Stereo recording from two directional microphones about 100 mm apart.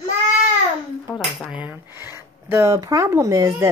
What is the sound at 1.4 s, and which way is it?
Speech, 10° right (ahead or behind).